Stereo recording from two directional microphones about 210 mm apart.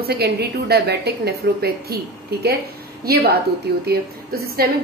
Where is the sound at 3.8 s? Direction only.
45° right (ahead or behind).